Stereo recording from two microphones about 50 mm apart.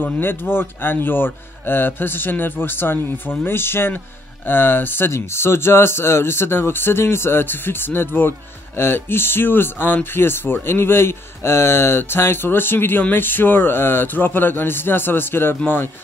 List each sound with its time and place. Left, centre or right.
0.0 s speech: left
5.1 s speech: left